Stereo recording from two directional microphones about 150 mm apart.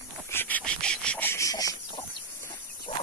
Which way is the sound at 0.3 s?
10° left (ahead or behind).